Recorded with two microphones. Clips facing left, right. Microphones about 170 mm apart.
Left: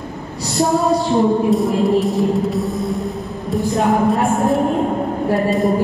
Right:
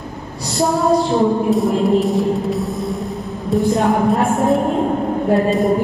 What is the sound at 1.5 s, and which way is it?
A woman's voice, centre (ahead or behind).